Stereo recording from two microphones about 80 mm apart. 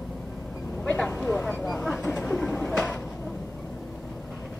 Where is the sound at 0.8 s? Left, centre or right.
Centre.